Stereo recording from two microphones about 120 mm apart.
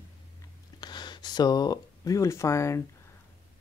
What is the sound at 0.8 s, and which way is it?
Speech, 40° left (ahead or behind).